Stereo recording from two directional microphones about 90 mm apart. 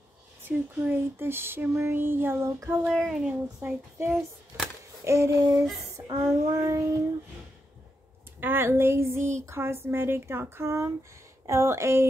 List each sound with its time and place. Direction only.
0.4 s speech: 25° right (ahead or behind)
2.9 s speech: 5° right (ahead or behind)
4.0 s child singing: 30° right (ahead or behind)
4.5 s a sound: 30° right (ahead or behind)
5.0 s child singing: 35° right (ahead or behind)
8.4 s speech: 25° right (ahead or behind)
11.4 s child singing: 30° right (ahead or behind)